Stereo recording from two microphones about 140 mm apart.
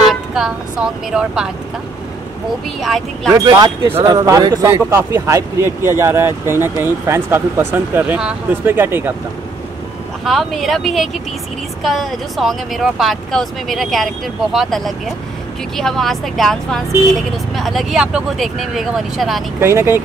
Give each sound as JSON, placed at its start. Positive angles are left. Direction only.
{"t": 0.1, "sound": "speech", "side_deg": -5}
{"t": 3.3, "sound": "speech", "side_deg": -25}
{"t": 10.2, "sound": "speech", "side_deg": 0}
{"t": 19.6, "sound": "speech", "side_deg": -15}